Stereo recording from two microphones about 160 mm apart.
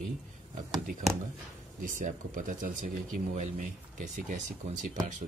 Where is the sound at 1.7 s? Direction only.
55° right (ahead or behind).